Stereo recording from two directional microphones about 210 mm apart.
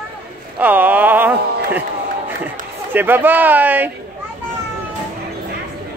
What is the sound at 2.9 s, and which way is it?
Speech, 10° right (ahead or behind).